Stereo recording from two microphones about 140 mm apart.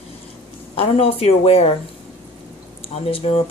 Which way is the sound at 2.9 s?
45° left (ahead or behind).